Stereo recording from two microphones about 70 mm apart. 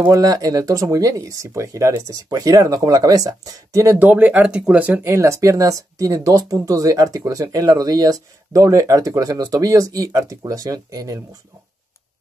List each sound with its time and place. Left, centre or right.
0.1 s speech: right
4.0 s speech: right
5.0 s speech: right